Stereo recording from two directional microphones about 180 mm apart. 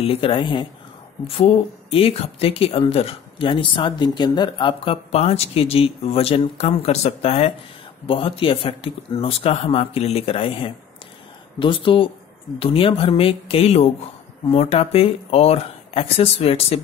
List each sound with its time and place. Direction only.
0.0 s speech: 30° left (ahead or behind)